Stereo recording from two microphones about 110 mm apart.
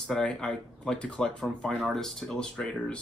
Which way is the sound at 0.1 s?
5° left (ahead or behind).